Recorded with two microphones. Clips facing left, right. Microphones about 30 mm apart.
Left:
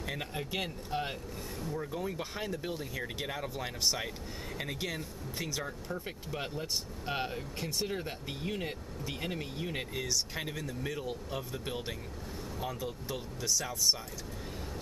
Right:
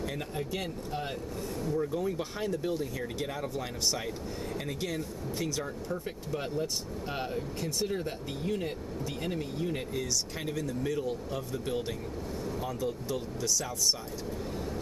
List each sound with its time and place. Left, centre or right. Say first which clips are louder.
0.0 s speech: right 3 dB; centre
1.6 s speech: right 6 dB; centre